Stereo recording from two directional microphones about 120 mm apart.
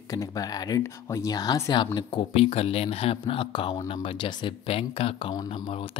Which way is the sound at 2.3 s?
55° left (ahead or behind).